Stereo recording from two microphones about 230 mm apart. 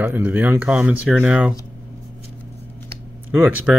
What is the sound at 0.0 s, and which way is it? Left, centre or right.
Speech, centre.